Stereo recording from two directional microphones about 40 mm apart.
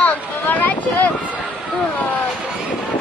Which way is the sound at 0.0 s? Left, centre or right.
Left.